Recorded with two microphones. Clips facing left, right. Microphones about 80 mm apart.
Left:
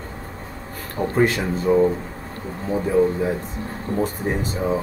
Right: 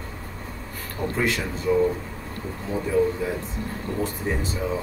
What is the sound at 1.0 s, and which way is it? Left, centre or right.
Speech, left.